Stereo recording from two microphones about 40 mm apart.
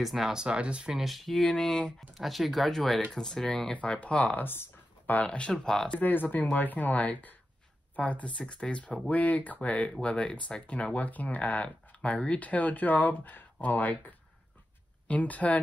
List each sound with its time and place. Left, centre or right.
0.0 s speech: centre
0.3 s speech: right
0.9 s speech: centre
1.6 s speech: centre
2.0 s speech: centre
3.9 s speech: left
4.4 s a sound: left
5.1 s speech: left
5.5 s speech: centre
5.9 s speech: left
9.1 s speech: left
11.0 s speech: left